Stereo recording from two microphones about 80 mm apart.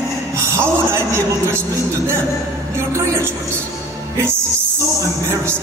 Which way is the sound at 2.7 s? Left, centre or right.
Right.